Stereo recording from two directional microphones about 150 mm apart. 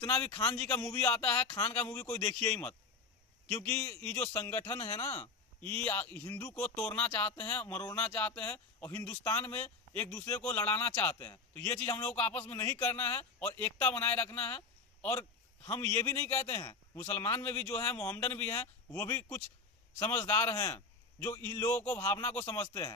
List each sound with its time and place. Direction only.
0.6 s speech: 20° left (ahead or behind)
0.8 s speech: 5° left (ahead or behind)
1.8 s speech: 20° left (ahead or behind)
2.0 s speech: 5° left (ahead or behind)
3.6 s speech: 5° left (ahead or behind)